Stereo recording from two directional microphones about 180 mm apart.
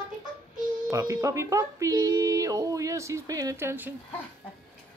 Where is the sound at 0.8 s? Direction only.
15° right (ahead or behind).